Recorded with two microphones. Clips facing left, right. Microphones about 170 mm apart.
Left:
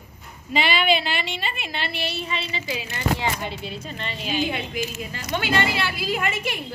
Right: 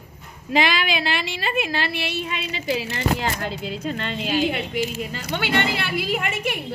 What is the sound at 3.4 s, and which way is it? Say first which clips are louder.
A woman's voice: right 4 dB; 80° right.